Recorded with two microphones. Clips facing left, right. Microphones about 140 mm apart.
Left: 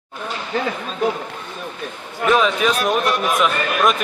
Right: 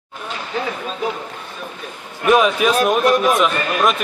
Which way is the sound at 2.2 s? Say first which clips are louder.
Right 2 dB; 10° right (ahead or behind).